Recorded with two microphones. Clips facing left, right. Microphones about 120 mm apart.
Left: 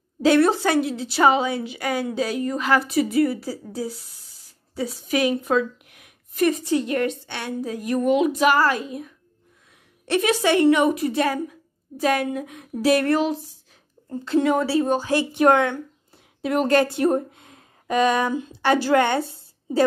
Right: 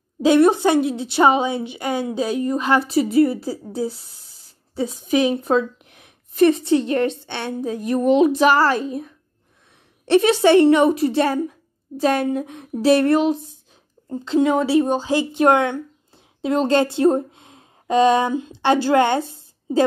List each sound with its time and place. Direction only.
0.2 s a woman's voice: 20° right (ahead or behind)